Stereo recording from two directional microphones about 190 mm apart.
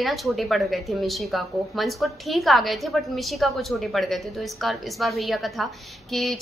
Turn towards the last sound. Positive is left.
turn(degrees=0)  # may be behind; listen again after turning